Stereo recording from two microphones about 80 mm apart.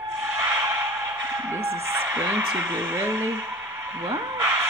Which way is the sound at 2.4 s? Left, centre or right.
Right.